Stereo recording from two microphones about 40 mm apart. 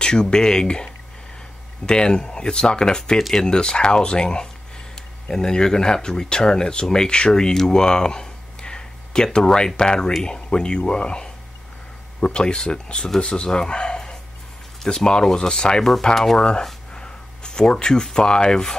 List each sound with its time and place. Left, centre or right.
0.0 s speech: left
3.2 s speech: centre
3.4 s speech: centre
7.5 s a sound: centre
9.8 s speech: left